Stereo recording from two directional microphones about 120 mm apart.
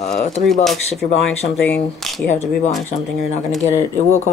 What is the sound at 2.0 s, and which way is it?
Speech, centre (ahead or behind).